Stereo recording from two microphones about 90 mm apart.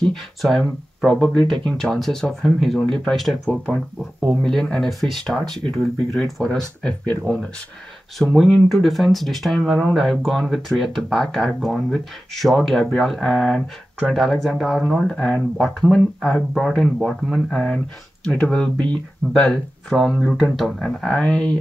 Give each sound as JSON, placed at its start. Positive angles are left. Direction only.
{"t": 0.0, "sound": "speech", "side_deg": 5}